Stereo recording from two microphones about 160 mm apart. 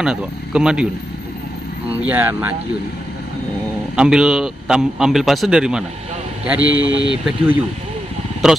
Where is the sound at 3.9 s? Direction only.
5° right (ahead or behind).